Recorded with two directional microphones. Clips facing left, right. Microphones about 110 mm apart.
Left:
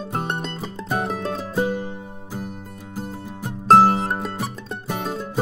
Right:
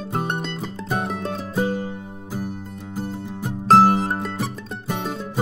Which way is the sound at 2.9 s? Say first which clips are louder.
Right 2 dB; centre (ahead or behind).